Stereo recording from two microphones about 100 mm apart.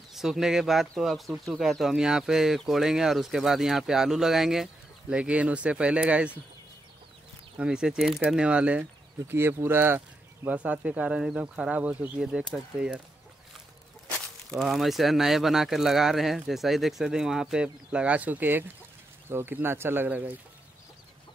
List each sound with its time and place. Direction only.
0.1 s speech: 5° right (ahead or behind)
7.5 s speech: 10° right (ahead or behind)
9.3 s speech: 25° right (ahead or behind)
14.1 s speech: 5° left (ahead or behind); by 20.3 s 15° right (ahead or behind)